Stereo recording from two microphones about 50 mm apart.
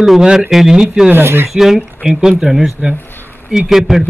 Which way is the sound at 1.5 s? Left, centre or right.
Centre.